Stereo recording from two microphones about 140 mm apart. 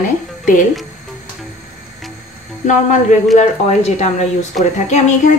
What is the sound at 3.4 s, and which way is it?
A woman's voice, 50° left (ahead or behind).